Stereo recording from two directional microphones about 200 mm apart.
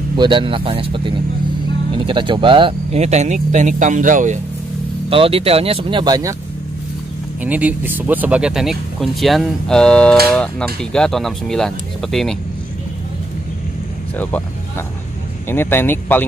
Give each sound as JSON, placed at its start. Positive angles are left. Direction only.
{"t": 0.2, "sound": "speech", "side_deg": -25}
{"t": 5.1, "sound": "speech", "side_deg": -30}
{"t": 7.4, "sound": "speech", "side_deg": -10}
{"t": 14.1, "sound": "speech", "side_deg": 10}
{"t": 15.5, "sound": "speech", "side_deg": 10}